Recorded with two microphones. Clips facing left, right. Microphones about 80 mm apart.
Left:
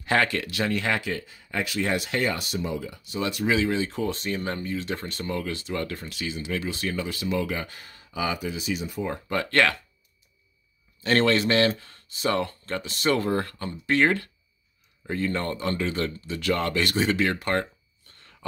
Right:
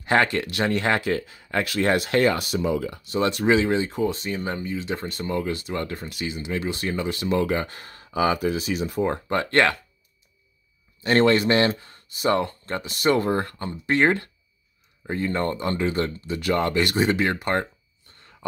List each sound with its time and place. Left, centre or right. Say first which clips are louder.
0.0 s speech: right 3 dB; right
3.3 s speech: right 4 dB; right
4.1 s speech: right 1 dB; centre; by 9.8 s right
11.0 s speech: right 3 dB; right